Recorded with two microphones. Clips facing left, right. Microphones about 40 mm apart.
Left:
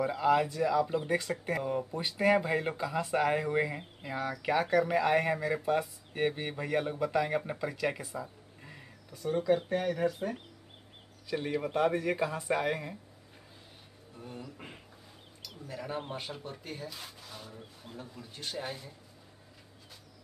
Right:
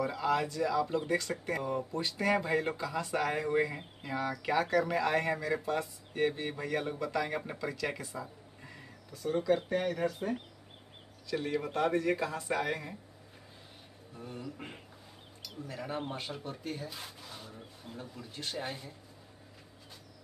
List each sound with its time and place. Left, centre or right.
0.0 s speech: centre
1.9 s speech: centre
11.2 s speech: centre
14.1 s speech: centre